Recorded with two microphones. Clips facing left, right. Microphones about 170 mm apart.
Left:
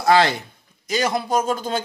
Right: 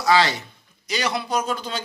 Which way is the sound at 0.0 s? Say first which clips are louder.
Left 3 dB; 55° left (ahead or behind).